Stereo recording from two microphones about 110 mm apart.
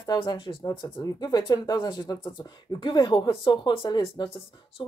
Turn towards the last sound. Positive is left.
turn(degrees=45)  # may be behind; listen again after turning